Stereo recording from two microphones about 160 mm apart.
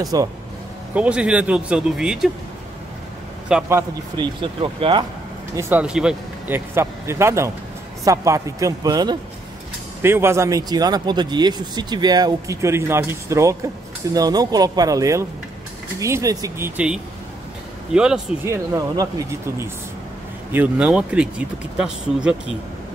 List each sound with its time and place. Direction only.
0.0 s speech: 25° right (ahead or behind)
0.9 s speech: 5° right (ahead or behind)
3.4 s a man's voice: 5° right (ahead or behind)
4.2 s speech: 30° right (ahead or behind)
5.6 s speech: 10° right (ahead or behind)
10.0 s speech: 15° right (ahead or behind)
18.4 s speech: 15° right (ahead or behind)